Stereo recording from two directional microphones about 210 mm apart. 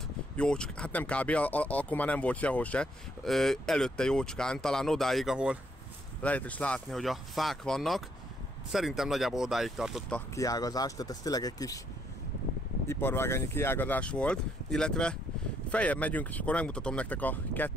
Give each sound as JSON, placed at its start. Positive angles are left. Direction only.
{"t": 0.4, "sound": "speech", "side_deg": 5}
{"t": 6.2, "sound": "speech", "side_deg": 5}
{"t": 10.3, "sound": "speech", "side_deg": 15}
{"t": 12.8, "sound": "speech", "side_deg": 10}